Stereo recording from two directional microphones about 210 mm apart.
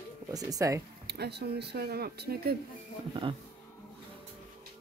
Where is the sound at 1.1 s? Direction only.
50° right (ahead or behind).